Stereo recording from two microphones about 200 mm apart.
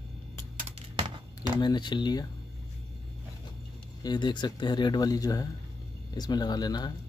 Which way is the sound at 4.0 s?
20° left (ahead or behind).